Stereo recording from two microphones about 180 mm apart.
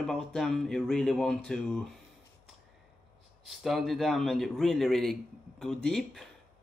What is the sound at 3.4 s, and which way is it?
Speech, centre (ahead or behind).